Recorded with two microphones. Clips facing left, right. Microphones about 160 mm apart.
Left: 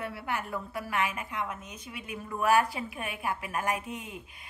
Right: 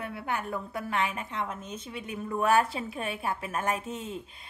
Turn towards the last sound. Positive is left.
turn(degrees=-30)  # may be behind; listen again after turning